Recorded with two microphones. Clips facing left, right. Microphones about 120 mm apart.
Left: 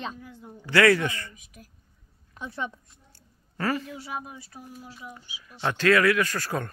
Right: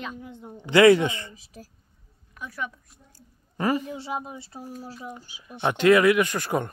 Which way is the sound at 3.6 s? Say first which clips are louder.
Right 3 dB; 15° right (ahead or behind).